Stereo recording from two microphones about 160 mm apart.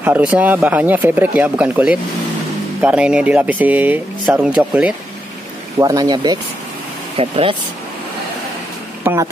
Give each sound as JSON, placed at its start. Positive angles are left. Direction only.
{"t": 0.0, "sound": "speech", "side_deg": -10}
{"t": 5.8, "sound": "speech", "side_deg": -25}
{"t": 7.2, "sound": "speech", "side_deg": -35}
{"t": 9.0, "sound": "speech", "side_deg": -20}